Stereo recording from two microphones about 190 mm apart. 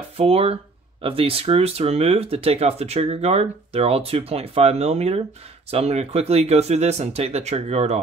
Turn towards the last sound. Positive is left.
turn(degrees=-35)  # may be behind; listen again after turning